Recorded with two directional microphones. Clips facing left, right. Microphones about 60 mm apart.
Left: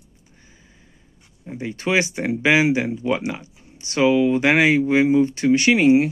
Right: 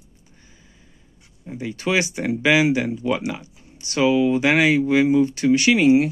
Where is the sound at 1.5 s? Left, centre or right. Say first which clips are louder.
Left 1 dB; left.